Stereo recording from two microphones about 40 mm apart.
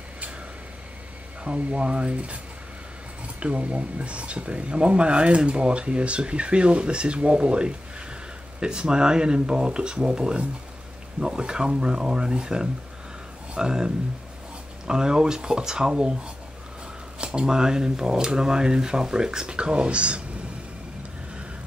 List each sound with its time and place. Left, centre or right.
1.4 s speech: right
3.3 s speech: right
17.2 s speech: right